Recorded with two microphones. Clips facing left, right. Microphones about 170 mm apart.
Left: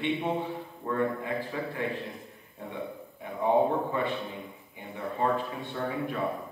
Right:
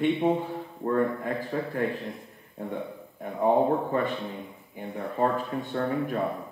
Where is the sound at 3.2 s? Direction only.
45° right (ahead or behind).